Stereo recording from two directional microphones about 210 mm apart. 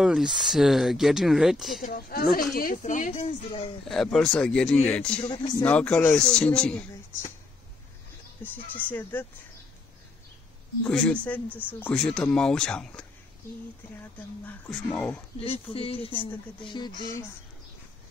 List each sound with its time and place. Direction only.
0.0 s speech: 5° right (ahead or behind)
1.8 s speech: 45° left (ahead or behind)
3.9 s speech: centre (ahead or behind)
5.2 s speech: 20° left (ahead or behind)
5.7 s speech: 5° left (ahead or behind)
8.4 s speech: 10° left (ahead or behind)
10.8 s speech: 5° left (ahead or behind)
15.4 s speech: 25° left (ahead or behind)